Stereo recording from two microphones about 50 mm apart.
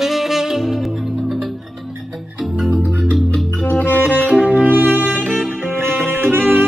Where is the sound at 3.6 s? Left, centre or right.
Left.